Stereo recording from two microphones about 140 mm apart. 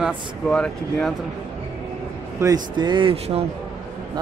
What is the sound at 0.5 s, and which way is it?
Speech, 5° left (ahead or behind).